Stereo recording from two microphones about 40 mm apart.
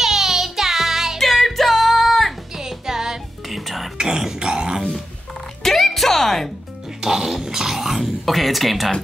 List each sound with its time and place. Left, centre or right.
0.0 s music: centre
1.2 s music: centre
2.5 s music: centre
3.4 s music: centre
4.0 s a sound: centre
5.6 s music: centre
7.0 s speech: centre